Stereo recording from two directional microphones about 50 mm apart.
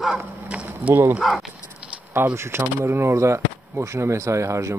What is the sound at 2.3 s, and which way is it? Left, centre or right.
Speech, right.